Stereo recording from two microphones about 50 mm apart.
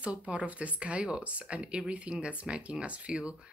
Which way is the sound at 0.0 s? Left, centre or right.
Right.